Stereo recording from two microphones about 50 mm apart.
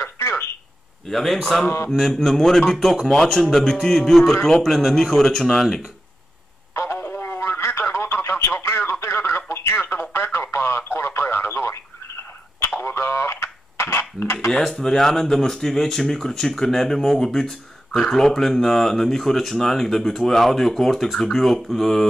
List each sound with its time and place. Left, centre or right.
1.0 s a man's voice: centre
6.7 s radio: left
7.3 s radio: left
9.0 s a sound: left
10.1 s radio: left
12.8 s a sound: left
14.5 s speech: centre